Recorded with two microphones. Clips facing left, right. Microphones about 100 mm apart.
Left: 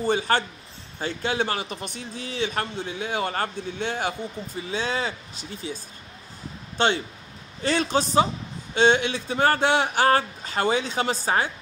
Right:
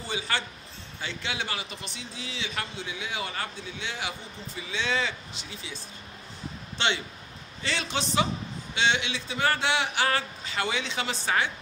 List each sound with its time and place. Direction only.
0.0 s speech: 50° left (ahead or behind)
6.8 s speech: 45° left (ahead or behind)